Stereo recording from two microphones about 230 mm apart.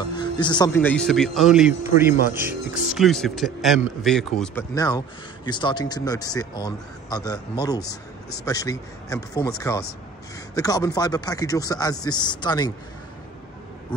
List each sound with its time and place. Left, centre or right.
0.0 s music: centre
0.7 s a man's voice: centre
4.7 s speech: centre